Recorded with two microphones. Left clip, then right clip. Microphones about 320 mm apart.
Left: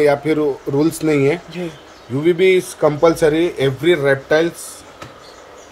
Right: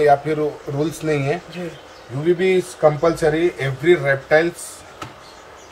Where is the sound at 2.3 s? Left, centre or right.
Left.